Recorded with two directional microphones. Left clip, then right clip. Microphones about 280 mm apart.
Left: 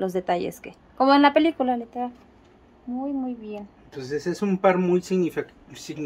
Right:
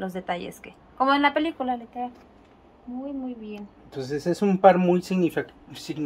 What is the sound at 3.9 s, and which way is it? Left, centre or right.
Speech, right.